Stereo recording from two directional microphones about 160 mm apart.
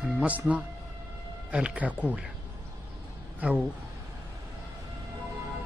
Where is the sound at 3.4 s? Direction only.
10° right (ahead or behind).